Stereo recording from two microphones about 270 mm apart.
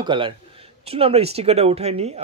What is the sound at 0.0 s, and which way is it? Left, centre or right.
Speech, centre.